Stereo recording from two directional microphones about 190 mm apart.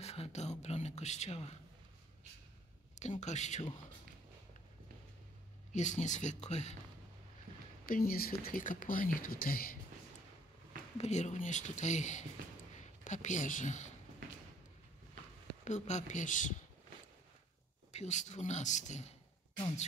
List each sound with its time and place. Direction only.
0.0 s speech: 35° left (ahead or behind)
3.0 s speech: 35° left (ahead or behind)
5.7 s speech: 40° left (ahead or behind)
7.8 s speech: 50° left (ahead or behind)
11.0 s speech: 35° left (ahead or behind)
15.6 s speech: 40° left (ahead or behind)
17.9 s speech: 40° left (ahead or behind)